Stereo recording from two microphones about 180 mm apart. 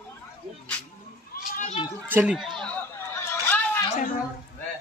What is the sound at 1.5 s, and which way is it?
Children playing, 45° left (ahead or behind).